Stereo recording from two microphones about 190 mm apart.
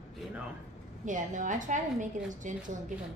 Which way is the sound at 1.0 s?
40° right (ahead or behind).